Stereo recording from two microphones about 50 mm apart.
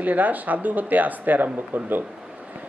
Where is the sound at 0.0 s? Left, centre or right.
Right.